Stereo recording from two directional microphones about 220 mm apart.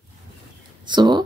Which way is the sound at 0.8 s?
20° right (ahead or behind).